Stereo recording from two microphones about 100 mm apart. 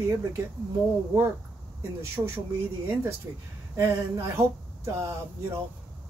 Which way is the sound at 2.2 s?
35° right (ahead or behind).